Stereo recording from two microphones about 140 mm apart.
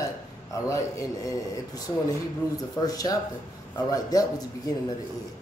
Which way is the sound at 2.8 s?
25° left (ahead or behind).